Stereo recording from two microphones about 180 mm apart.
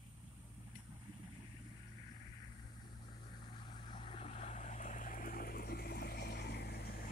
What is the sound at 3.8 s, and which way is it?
Vehicle, 30° left (ahead or behind).